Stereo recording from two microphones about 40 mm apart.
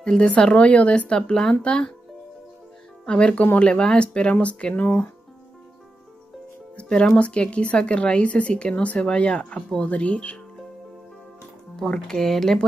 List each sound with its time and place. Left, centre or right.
0.0 s a woman's voice: left
3.1 s a woman's voice: left
6.8 s music: left
7.2 s a woman's voice: left
11.8 s speech: centre